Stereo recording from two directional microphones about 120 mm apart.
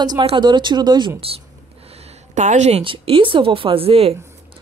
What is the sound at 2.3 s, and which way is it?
Speech, 80° right.